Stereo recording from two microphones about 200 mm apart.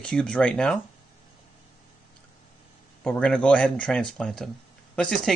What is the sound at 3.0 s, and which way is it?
Speech, 5° left (ahead or behind).